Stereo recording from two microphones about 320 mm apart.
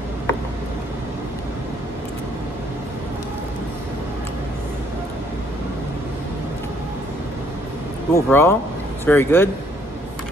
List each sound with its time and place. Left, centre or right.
8.1 s speech: centre